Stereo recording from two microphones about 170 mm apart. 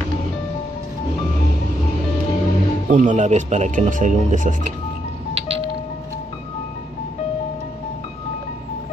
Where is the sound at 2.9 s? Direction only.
45° right (ahead or behind).